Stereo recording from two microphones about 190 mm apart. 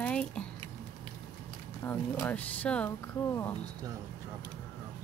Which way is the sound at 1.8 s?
10° left (ahead or behind).